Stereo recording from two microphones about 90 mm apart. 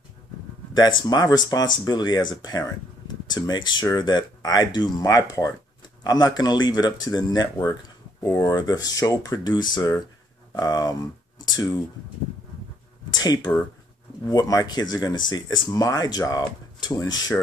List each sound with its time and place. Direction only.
0.7 s speech: 50° left (ahead or behind)
6.0 s speech: 50° left (ahead or behind)
8.2 s speech: 35° left (ahead or behind)
9.4 s speech: 55° left (ahead or behind)
13.1 s a sound: 50° left (ahead or behind)
14.2 s speech: 45° left (ahead or behind)